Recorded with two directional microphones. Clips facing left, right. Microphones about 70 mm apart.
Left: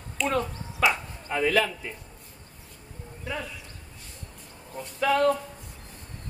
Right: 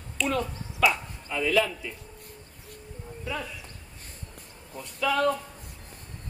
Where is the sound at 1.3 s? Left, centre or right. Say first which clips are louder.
Left 1 dB; left.